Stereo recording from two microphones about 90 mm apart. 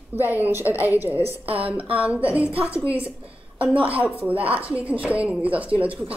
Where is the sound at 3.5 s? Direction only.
15° right (ahead or behind).